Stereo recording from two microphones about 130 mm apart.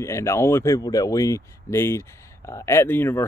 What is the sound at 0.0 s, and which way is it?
Speech, 20° left (ahead or behind).